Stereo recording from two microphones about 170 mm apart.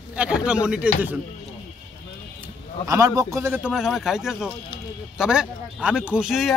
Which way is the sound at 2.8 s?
20° right (ahead or behind).